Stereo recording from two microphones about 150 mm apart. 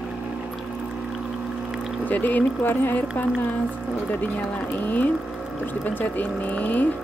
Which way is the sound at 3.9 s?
10° left (ahead or behind).